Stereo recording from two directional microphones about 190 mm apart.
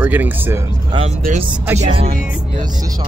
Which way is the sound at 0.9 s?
30° right (ahead or behind).